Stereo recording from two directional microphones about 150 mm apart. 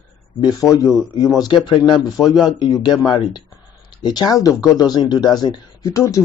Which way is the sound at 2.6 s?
30° left (ahead or behind).